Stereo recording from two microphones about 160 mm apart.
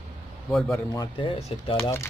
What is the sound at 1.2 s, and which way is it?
Speech, 40° left (ahead or behind).